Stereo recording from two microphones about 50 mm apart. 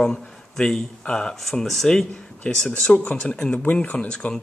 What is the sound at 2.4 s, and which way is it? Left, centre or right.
Speech, left.